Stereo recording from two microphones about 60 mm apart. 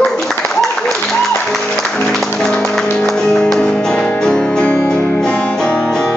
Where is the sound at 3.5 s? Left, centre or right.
Centre.